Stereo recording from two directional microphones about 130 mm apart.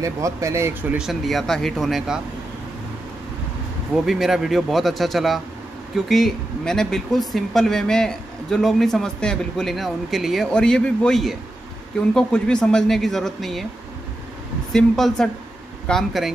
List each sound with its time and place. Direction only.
0.0 s speech: 25° right (ahead or behind)
0.9 s speech: centre (ahead or behind)
4.0 s speech: 5° right (ahead or behind)
14.7 s speech: 5° left (ahead or behind)